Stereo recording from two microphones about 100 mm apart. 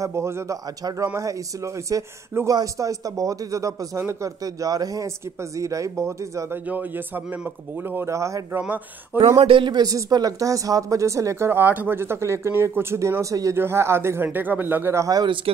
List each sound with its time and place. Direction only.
0.0 s a man's voice: 30° right (ahead or behind)
7.9 s speech: 25° right (ahead or behind)
8.6 s speech: 15° right (ahead or behind)
9.4 s a man's voice: 60° right (ahead or behind)
9.8 s speech: 35° right (ahead or behind)
15.5 s speech: 75° right (ahead or behind)